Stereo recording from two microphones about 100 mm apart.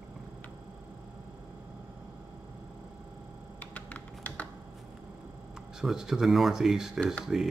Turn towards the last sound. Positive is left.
turn(degrees=-5)  # may be behind; listen again after turning